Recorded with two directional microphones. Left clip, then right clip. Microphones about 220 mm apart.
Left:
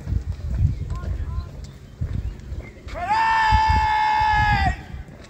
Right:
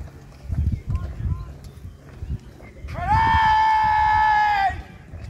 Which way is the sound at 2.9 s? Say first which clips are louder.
Right 1 dB; 45° left (ahead or behind).